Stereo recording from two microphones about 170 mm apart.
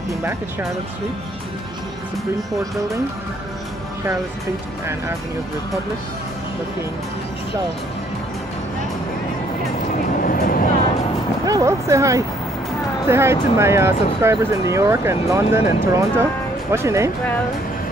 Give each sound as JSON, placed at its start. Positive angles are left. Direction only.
{"t": 0.1, "sound": "speech", "side_deg": -15}
{"t": 10.1, "sound": "a sound", "side_deg": 55}
{"t": 11.4, "sound": "speech", "side_deg": -20}